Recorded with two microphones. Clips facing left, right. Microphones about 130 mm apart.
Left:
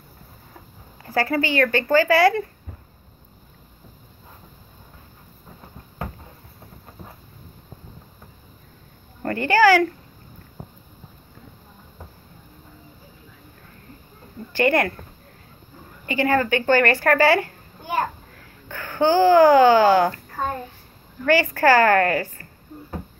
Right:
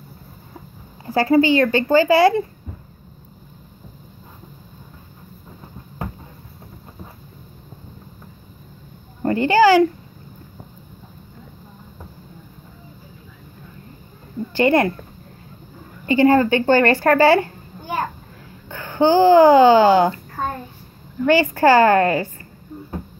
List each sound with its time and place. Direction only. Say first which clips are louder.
1.0 s a woman's voice: right 7 dB; 20° right (ahead or behind)
9.2 s a sound: right 3 dB; 20° right (ahead or behind)
14.5 s a woman's voice: right 3 dB; 25° right (ahead or behind)
16.1 s a woman's voice: right 6 dB; 30° right (ahead or behind)
18.7 s speech: right 3 dB; 25° right (ahead or behind)
21.3 s a woman's voice: right 3 dB; 25° right (ahead or behind)